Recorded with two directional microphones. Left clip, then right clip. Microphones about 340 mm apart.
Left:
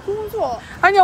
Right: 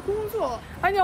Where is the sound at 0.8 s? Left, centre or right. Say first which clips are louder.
Left 9 dB; left.